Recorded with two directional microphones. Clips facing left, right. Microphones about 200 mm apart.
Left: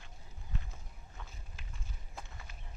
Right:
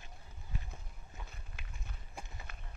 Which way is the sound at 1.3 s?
60° right (ahead or behind).